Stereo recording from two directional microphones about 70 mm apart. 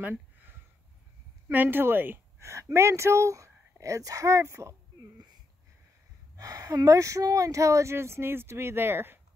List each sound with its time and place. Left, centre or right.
0.0 s a sound: right
1.5 s a woman's voice: right
6.3 s speech: right